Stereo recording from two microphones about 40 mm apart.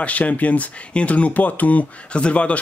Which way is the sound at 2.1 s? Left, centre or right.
Left.